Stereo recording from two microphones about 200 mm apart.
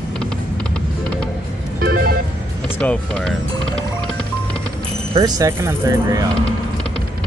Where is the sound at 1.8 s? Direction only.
50° right (ahead or behind).